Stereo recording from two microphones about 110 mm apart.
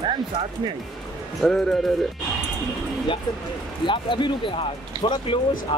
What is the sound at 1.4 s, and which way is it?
Speech, centre (ahead or behind).